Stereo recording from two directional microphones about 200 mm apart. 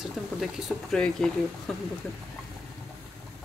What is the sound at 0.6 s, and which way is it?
Speech, centre (ahead or behind).